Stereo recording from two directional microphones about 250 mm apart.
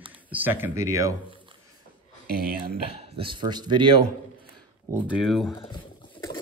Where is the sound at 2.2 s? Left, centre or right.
Right.